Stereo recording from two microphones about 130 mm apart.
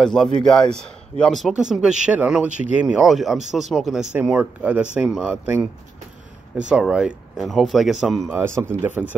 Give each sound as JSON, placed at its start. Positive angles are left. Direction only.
{"t": 0.0, "sound": "speech", "side_deg": 5}
{"t": 6.7, "sound": "speech", "side_deg": -5}
{"t": 8.3, "sound": "speech", "side_deg": -20}